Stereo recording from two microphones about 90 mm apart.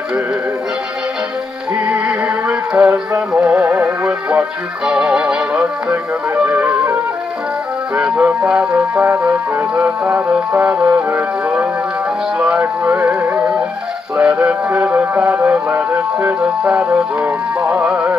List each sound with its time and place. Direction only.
1.8 s music: 10° right (ahead or behind); by 7.0 s 25° right (ahead or behind)
7.9 s music: 15° right (ahead or behind)